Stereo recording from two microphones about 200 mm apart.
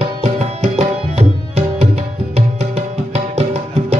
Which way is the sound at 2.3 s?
30° right (ahead or behind).